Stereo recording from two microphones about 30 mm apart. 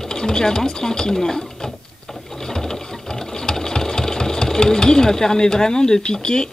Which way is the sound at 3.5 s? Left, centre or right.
Centre.